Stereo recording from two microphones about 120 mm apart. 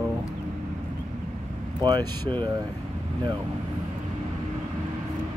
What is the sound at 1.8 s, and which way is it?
Speech, 40° right (ahead or behind).